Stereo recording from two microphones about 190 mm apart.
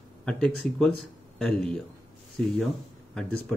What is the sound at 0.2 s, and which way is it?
Speech, 5° left (ahead or behind).